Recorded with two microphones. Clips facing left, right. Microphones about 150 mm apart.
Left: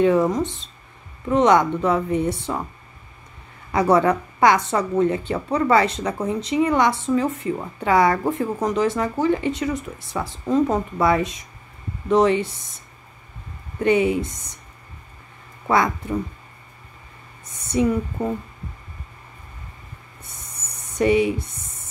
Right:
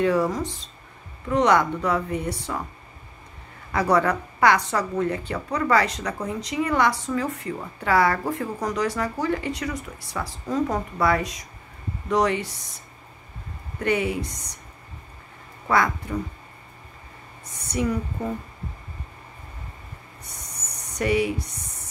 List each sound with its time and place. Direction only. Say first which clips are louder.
0.0 s speech: left 4 dB; 20° left (ahead or behind)
3.7 s speech: left 4 dB; 25° left (ahead or behind)
13.7 s speech: left 6 dB; 25° left (ahead or behind)
15.6 s speech: left 2 dB; 25° left (ahead or behind)
17.6 s speech: left 5 dB; 25° left (ahead or behind)
20.6 s a sound: left 6 dB; 25° left (ahead or behind)